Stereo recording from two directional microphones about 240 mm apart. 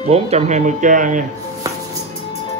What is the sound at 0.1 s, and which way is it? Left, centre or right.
Speech, right.